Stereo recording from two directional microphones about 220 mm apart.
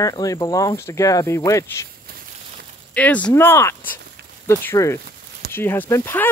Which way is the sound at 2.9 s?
5° left (ahead or behind).